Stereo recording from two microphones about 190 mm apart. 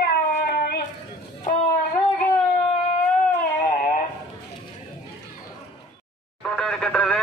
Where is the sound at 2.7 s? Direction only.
35° left (ahead or behind).